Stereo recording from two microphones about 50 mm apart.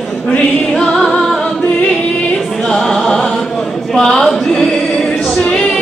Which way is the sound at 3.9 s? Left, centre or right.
Centre.